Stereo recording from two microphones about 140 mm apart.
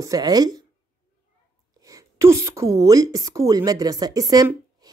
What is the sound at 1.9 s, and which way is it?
A woman's voice, 20° right (ahead or behind).